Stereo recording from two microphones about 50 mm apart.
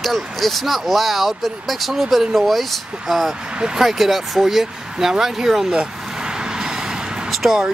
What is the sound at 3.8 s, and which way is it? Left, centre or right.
Speech, centre.